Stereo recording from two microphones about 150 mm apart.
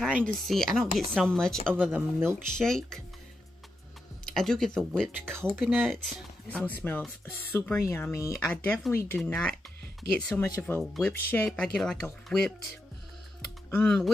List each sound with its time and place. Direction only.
0.2 s speech: centre (ahead or behind)
1.7 s speech: 15° right (ahead or behind)
2.5 s speech: 5° left (ahead or behind)
4.3 s speech: 5° left (ahead or behind)
10.4 s speech: 20° left (ahead or behind)
10.8 s speech: centre (ahead or behind)
11.1 s speech: 10° left (ahead or behind)
13.7 s speech: 10° left (ahead or behind)